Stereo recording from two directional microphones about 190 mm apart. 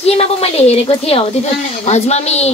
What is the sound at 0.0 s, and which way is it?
A woman's voice, 30° left (ahead or behind).